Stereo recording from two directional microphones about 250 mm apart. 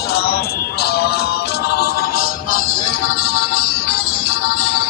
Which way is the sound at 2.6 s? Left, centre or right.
Left.